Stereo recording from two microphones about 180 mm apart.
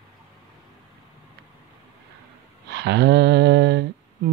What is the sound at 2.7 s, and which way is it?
Speech, 70° right (ahead or behind).